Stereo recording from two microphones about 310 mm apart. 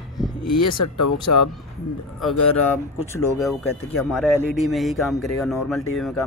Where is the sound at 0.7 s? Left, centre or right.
Left.